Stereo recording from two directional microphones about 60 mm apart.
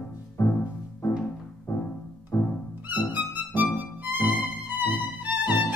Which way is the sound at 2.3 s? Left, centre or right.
Left.